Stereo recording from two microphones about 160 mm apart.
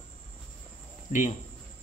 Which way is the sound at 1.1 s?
55° left (ahead or behind).